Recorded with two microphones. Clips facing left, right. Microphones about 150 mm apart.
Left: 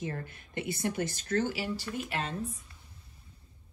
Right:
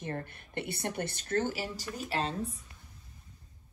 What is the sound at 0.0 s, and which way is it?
Speech, 55° right (ahead or behind).